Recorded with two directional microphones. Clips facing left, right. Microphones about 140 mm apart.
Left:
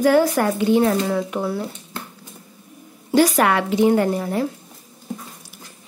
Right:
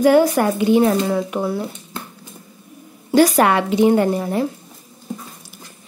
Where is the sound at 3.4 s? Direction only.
25° right (ahead or behind).